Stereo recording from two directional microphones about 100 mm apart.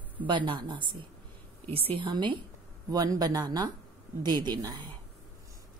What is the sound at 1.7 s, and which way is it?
Speech, 70° right (ahead or behind).